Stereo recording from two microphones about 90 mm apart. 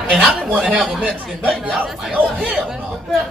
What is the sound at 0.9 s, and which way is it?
Speech, 15° right (ahead or behind).